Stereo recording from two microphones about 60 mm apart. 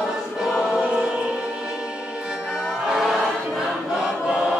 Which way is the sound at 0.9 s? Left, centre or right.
Centre.